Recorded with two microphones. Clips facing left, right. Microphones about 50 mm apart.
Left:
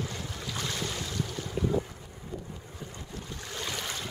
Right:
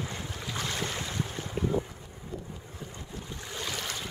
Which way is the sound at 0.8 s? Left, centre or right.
Right.